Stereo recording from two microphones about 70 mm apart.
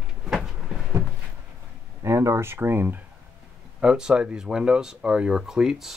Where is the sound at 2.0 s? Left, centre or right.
Right.